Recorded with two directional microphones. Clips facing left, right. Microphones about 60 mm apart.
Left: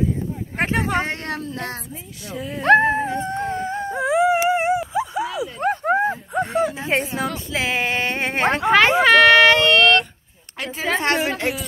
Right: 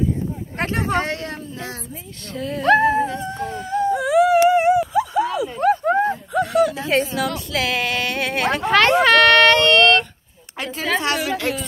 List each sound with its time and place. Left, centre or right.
1.3 s speech: left
2.3 s speech: centre
2.6 s a sound: left; by 5.5 s centre
5.6 s a sound: left
6.3 s speech: left
7.0 s a woman's voice: left
7.2 s speech: left
8.6 s speech: centre
10.7 s speech: left
11.0 s a woman's voice: left